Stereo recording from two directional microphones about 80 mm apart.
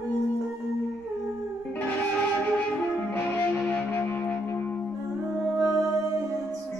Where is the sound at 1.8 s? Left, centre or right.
Centre.